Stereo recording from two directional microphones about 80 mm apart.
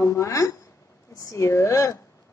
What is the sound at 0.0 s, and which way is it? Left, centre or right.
Speech, left.